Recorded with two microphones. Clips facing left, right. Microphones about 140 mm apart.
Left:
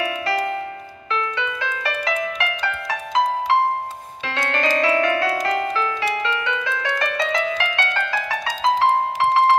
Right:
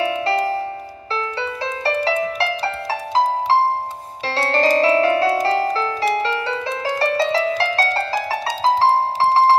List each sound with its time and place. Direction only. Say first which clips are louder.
0.0 s music: right 4 dB; 30° right (ahead or behind)